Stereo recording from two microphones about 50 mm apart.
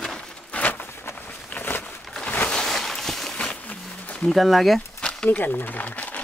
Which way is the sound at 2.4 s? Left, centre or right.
Centre.